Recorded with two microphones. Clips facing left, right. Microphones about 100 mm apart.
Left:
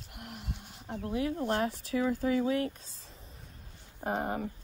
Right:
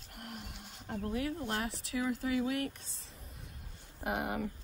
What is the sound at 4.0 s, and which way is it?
Speech, 35° left (ahead or behind).